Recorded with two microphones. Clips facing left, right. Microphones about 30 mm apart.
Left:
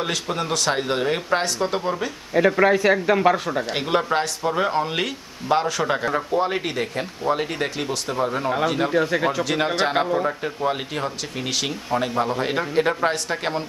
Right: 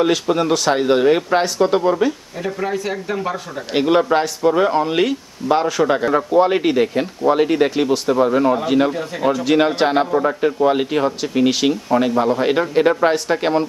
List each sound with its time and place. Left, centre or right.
0.0 s speech: centre
2.3 s speech: left
3.7 s speech: centre
6.3 s speech: centre
8.9 s speech: left
9.4 s speech: centre